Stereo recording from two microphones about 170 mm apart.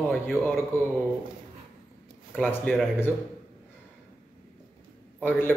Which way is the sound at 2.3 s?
10° left (ahead or behind).